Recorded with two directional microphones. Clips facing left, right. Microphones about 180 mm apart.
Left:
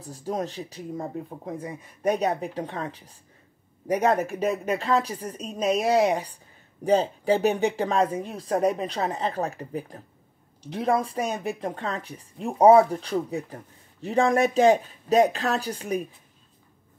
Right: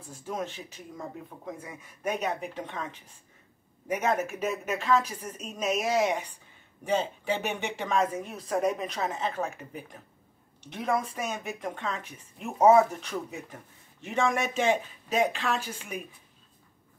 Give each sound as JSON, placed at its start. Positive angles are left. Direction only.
{"t": 0.0, "sound": "speech", "side_deg": 35}